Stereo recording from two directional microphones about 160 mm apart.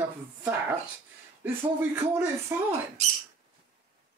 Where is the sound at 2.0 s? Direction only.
15° right (ahead or behind).